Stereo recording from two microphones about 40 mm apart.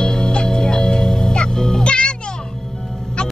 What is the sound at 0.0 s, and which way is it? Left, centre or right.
Music, centre.